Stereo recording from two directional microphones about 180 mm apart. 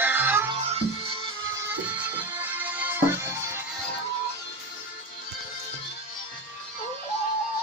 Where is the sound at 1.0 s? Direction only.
30° right (ahead or behind).